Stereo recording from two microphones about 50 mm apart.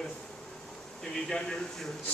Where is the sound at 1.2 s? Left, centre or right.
Centre.